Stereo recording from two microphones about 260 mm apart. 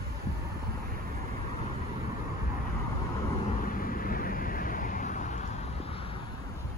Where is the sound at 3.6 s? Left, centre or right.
Left.